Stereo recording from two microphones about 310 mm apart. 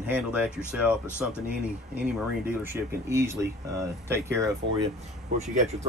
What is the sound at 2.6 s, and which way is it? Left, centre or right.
Speech, centre.